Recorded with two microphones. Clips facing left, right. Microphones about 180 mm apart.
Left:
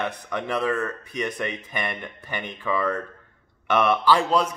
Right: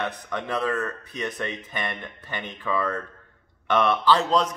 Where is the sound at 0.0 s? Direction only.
10° left (ahead or behind).